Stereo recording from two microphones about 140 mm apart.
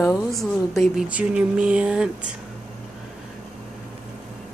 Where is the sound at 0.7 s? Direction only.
Centre (ahead or behind).